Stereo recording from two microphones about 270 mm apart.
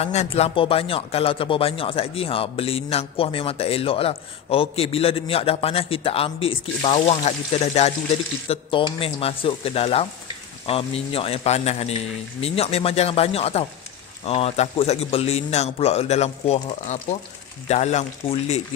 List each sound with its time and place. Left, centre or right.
0.0 s speech: left